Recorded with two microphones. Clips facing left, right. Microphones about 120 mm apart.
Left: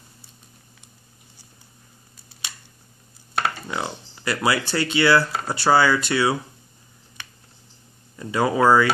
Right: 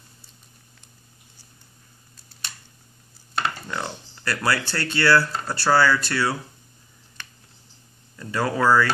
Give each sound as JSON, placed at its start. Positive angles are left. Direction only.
{"t": 3.4, "sound": "dishes", "side_deg": 10}
{"t": 4.2, "sound": "speech", "side_deg": 15}
{"t": 8.2, "sound": "speech", "side_deg": 15}